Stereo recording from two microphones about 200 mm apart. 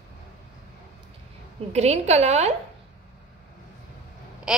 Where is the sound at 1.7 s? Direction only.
35° right (ahead or behind).